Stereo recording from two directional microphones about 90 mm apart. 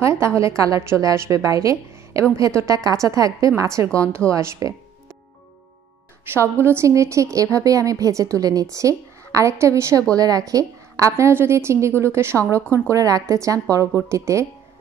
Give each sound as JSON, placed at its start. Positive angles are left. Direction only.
{"t": 0.0, "sound": "a woman's voice", "side_deg": -30}
{"t": 6.3, "sound": "a woman's voice", "side_deg": -25}